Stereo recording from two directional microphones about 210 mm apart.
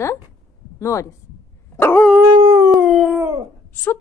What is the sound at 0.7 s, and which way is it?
Speech, 15° left (ahead or behind).